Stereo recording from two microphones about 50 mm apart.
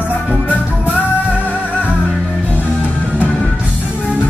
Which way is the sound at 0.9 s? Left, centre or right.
Right.